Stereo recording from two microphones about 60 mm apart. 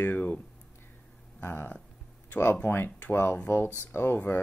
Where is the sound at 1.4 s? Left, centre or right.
Left.